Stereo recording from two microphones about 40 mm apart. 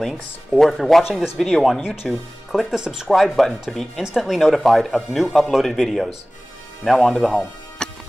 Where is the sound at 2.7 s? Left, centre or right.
Centre.